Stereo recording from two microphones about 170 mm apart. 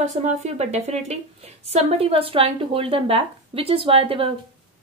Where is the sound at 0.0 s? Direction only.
45° right (ahead or behind).